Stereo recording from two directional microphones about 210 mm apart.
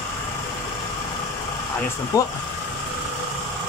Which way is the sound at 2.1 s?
15° left (ahead or behind).